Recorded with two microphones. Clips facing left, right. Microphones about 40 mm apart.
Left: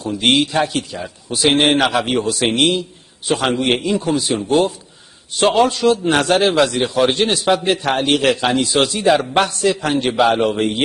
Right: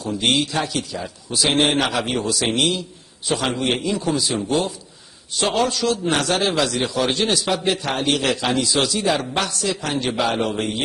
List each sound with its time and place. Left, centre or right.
0.2 s a man's voice: left